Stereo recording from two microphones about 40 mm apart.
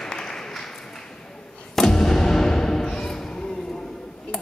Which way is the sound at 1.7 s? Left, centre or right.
Centre.